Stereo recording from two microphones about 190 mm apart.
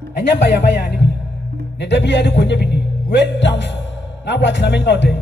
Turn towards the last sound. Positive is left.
turn(degrees=65)  # may be behind; listen again after turning